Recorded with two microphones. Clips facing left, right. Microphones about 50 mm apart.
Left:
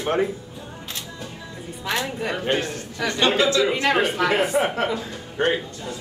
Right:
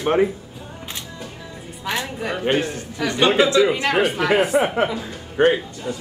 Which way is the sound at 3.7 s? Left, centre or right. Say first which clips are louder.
Right 1 dB; centre.